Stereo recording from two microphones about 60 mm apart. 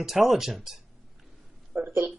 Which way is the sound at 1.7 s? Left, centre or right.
Right.